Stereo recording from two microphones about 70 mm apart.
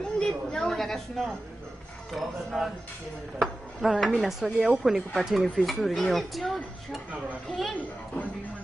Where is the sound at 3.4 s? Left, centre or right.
Centre.